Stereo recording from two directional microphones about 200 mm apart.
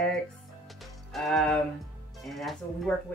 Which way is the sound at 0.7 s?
Centre (ahead or behind).